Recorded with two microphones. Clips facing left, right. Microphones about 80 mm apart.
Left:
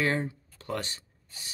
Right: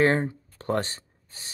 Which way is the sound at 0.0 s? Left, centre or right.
Right.